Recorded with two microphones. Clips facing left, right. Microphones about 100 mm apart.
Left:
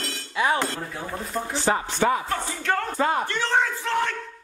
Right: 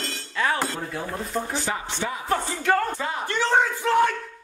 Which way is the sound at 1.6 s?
45° left (ahead or behind).